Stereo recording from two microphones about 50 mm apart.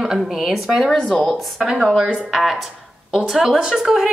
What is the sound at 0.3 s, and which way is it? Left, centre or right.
Speech, centre.